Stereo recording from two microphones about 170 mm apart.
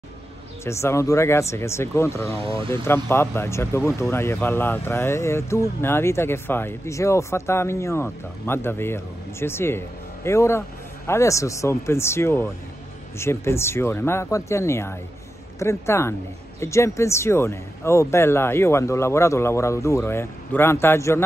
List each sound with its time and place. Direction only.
0.7 s speech: 15° left (ahead or behind)